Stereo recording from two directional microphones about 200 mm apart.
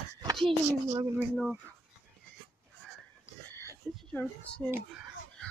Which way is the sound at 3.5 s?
10° left (ahead or behind).